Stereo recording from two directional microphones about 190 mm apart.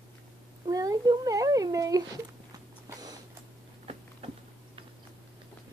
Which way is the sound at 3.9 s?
30° right (ahead or behind).